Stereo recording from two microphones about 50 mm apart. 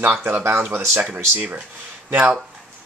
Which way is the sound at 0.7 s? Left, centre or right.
Right.